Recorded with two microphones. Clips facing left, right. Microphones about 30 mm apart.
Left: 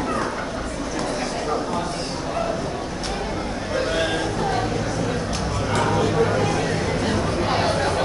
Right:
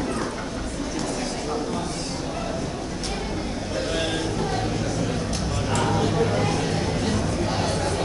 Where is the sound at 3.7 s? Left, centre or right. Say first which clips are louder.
Left 4 dB; left.